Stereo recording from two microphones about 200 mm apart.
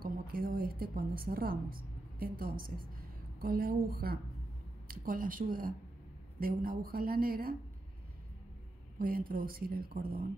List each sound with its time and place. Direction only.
0.0 s speech: 45° right (ahead or behind)
8.9 s speech: 45° right (ahead or behind)